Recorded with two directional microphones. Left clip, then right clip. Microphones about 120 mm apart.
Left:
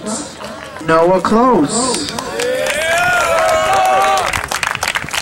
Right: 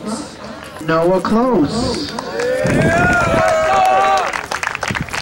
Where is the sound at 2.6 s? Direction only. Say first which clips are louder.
Even; 25° left (ahead or behind).